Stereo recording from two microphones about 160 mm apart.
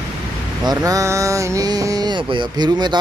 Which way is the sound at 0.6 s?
25° right (ahead or behind).